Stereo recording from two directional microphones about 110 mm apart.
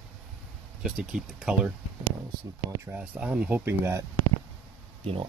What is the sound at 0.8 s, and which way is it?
Speech, 5° right (ahead or behind).